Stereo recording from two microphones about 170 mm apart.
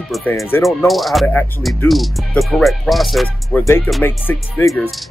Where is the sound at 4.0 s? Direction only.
10° left (ahead or behind).